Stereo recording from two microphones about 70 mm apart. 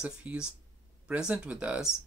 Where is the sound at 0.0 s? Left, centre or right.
Centre.